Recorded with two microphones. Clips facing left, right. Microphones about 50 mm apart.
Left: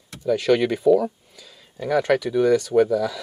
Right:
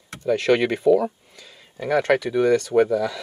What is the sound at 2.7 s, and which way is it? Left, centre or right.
Speech, centre.